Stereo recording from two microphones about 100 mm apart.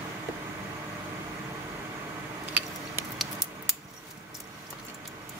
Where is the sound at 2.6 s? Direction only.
20° right (ahead or behind).